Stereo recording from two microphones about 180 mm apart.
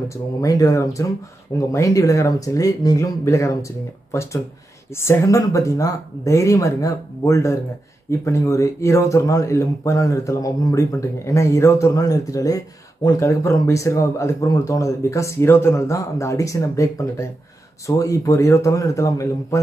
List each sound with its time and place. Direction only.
0.1 s speech: 20° left (ahead or behind)